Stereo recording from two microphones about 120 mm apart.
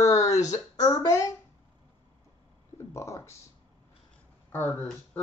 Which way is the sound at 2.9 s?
25° left (ahead or behind).